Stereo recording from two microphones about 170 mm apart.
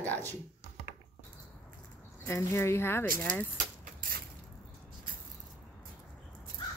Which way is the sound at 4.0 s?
60° right (ahead or behind).